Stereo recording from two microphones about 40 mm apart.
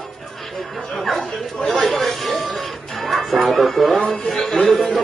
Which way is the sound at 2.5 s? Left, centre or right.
Centre.